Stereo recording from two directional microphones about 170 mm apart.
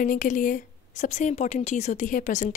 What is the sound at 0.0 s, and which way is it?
A woman's voice, 50° left (ahead or behind).